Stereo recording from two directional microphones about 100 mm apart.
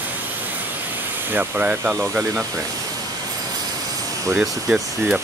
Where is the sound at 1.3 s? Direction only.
20° right (ahead or behind).